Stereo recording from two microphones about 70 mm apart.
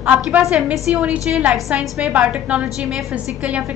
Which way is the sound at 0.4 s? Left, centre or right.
Centre.